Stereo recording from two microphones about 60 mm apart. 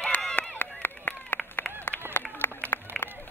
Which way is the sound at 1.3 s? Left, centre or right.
Left.